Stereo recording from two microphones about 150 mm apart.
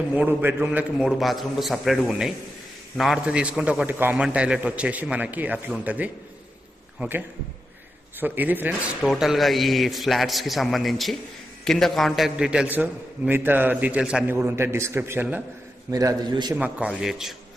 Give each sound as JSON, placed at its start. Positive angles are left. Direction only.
{"t": 0.1, "sound": "a man's voice", "side_deg": -10}
{"t": 9.1, "sound": "a man's voice", "side_deg": 0}
{"t": 15.9, "sound": "a man's voice", "side_deg": -25}
{"t": 16.5, "sound": "a man's voice", "side_deg": -10}